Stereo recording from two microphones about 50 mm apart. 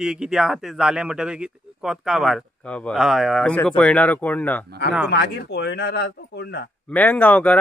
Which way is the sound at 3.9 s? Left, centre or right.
Left.